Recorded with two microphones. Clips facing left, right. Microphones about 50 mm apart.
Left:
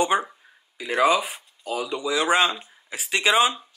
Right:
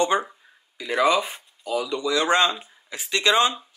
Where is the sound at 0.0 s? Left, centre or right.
Centre.